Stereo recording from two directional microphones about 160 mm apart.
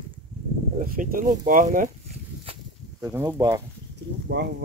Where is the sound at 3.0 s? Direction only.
20° right (ahead or behind).